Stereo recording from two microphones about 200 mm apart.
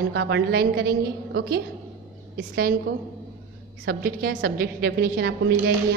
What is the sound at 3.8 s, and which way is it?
A woman's voice, 50° right (ahead or behind).